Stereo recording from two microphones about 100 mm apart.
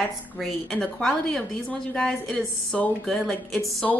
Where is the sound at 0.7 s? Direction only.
5° left (ahead or behind).